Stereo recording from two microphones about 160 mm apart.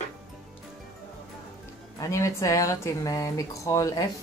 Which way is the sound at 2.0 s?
20° left (ahead or behind).